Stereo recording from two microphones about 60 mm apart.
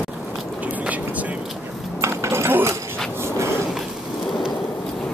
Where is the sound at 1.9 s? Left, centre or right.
Right.